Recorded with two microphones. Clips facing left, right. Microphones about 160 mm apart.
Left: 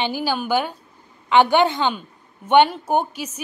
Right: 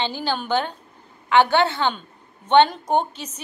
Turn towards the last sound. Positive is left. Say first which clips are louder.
# left 1 dB
turn(degrees=10)  # may be behind; listen again after turning